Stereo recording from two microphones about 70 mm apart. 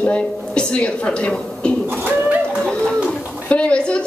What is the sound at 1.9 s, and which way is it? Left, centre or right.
Bird, right.